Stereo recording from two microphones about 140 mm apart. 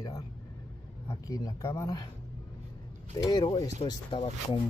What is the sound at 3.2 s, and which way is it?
Speech, 30° left (ahead or behind).